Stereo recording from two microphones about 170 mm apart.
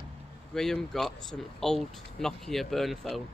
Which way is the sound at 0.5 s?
Centre (ahead or behind).